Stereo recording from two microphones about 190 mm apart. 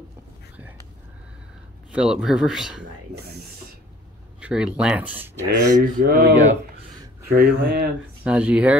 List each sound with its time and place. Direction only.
0.6 s a sound: 10° right (ahead or behind)
1.9 s a man's voice: 5° right (ahead or behind)
3.2 s a sound: 55° right (ahead or behind)
4.4 s speech: 5° right (ahead or behind)
5.8 s mantra: 50° right (ahead or behind)
8.2 s speech: 10° right (ahead or behind)